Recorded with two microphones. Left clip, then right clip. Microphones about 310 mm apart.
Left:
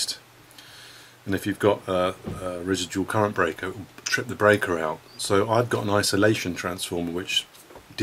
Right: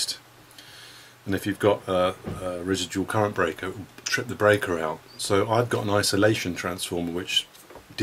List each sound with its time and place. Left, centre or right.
1.2 s speech: centre